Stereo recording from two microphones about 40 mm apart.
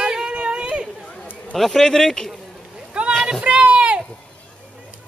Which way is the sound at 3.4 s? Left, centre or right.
Right.